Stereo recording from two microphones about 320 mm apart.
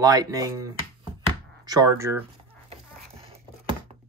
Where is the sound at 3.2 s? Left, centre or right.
Centre.